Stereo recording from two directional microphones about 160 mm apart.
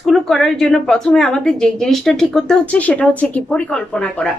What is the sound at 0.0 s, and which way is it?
A woman's voice, centre (ahead or behind).